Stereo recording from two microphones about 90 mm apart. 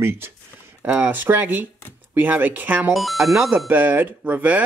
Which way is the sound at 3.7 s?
20° right (ahead or behind).